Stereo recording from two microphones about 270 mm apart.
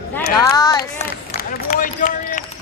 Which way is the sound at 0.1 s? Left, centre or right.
Centre.